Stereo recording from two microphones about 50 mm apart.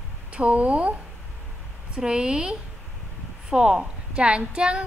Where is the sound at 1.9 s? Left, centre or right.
Centre.